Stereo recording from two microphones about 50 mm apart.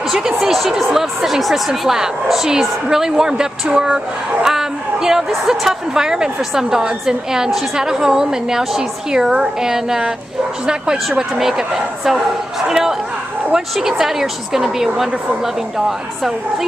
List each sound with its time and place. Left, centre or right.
0.1 s a woman's voice: centre
11.1 s a woman's voice: centre